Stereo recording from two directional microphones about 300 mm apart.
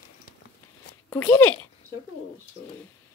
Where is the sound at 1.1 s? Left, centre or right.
Centre.